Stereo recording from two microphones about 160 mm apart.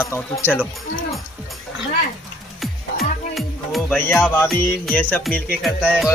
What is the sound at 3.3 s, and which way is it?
Music, centre (ahead or behind).